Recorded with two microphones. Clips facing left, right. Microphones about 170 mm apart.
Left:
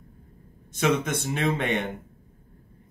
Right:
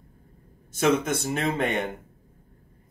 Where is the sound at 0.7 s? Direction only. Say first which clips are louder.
Right 2 dB; 45° right (ahead or behind).